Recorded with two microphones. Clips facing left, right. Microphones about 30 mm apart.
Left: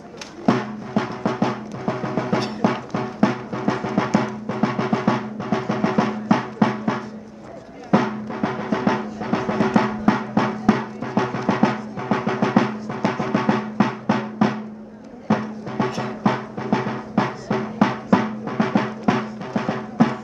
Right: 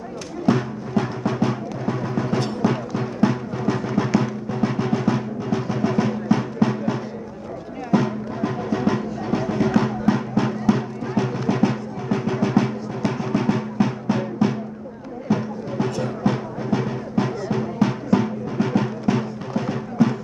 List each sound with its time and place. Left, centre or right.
0.5 s music: centre